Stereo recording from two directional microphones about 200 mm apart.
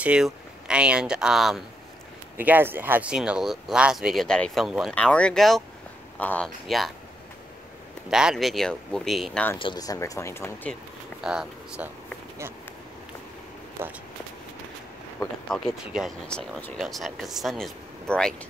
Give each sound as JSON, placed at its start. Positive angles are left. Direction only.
{"t": 0.0, "sound": "speech", "side_deg": -5}
{"t": 8.1, "sound": "speech", "side_deg": -5}
{"t": 9.6, "sound": "speech", "side_deg": 20}
{"t": 11.1, "sound": "speech", "side_deg": -5}
{"t": 15.2, "sound": "speech", "side_deg": 20}
{"t": 15.5, "sound": "speech", "side_deg": 0}